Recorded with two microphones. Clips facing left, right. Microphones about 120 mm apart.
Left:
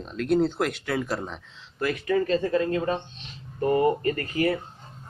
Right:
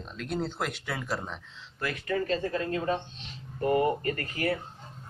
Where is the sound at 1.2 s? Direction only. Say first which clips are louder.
Left 3 dB; 15° left (ahead or behind).